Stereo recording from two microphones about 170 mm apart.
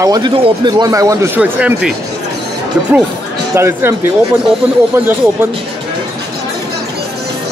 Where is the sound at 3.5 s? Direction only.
15° right (ahead or behind).